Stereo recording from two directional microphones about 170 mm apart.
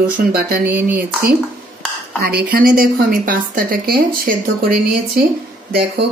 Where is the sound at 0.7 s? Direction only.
10° right (ahead or behind).